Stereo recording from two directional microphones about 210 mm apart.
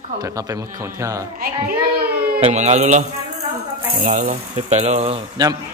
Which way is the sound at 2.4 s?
30° right (ahead or behind).